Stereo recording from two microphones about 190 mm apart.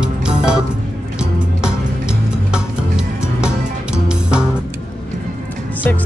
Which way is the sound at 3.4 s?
5° right (ahead or behind).